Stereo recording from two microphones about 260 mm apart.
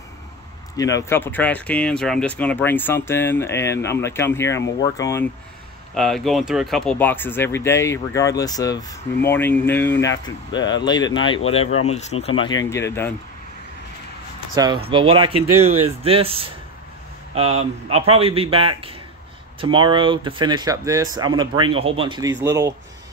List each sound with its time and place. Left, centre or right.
0.7 s speech: centre
5.9 s speech: centre; by 12.4 s left
12.4 s speech: centre
14.5 s speech: centre